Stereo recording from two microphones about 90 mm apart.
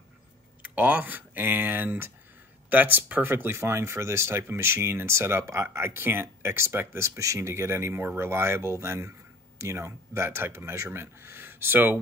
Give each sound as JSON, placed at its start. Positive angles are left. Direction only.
{"t": 0.7, "sound": "speech", "side_deg": -15}